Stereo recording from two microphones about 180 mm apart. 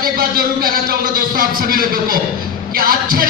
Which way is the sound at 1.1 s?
55° right (ahead or behind).